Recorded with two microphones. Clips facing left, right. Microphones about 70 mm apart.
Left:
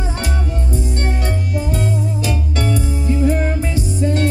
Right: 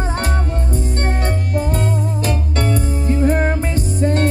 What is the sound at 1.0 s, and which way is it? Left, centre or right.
Music, right.